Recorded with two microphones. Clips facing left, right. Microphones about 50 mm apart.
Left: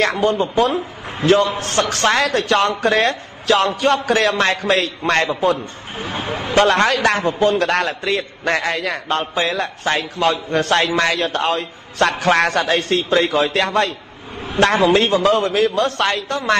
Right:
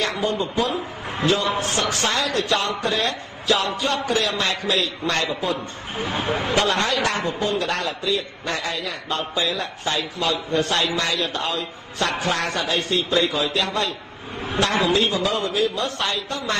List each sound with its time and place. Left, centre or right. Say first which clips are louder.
0.0 s a man's voice: left 6 dB; left
5.9 s speech: even; left
6.5 s a man's voice: left 8 dB; left
13.1 s a man's voice: left 6 dB; left
14.6 s a man's voice: left 6 dB; left